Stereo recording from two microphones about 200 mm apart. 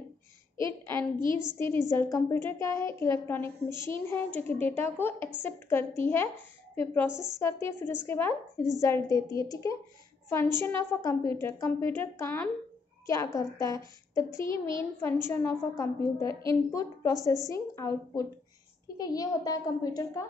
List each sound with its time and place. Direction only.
1.6 s a woman's voice: 15° left (ahead or behind)
14.5 s a child's voice: 25° right (ahead or behind)
15.2 s a woman's voice: 15° left (ahead or behind)